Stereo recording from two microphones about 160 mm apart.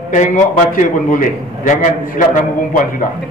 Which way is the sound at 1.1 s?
55° left (ahead or behind).